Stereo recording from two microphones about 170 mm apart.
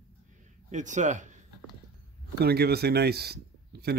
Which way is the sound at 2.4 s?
70° right (ahead or behind).